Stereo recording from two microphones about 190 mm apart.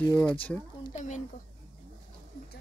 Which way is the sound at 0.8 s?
40° left (ahead or behind).